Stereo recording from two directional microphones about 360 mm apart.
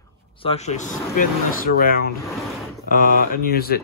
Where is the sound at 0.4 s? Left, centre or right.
Centre.